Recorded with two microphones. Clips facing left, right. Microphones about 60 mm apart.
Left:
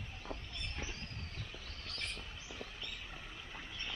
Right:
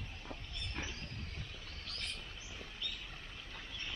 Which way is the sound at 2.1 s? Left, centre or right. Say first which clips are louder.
Left 2 dB; centre.